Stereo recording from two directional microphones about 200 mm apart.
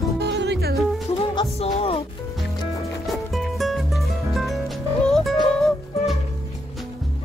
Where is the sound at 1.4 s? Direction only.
25° left (ahead or behind).